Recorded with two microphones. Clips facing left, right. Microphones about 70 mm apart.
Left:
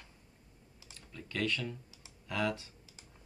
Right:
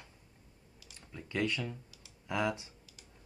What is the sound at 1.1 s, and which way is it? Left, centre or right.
Speech, centre.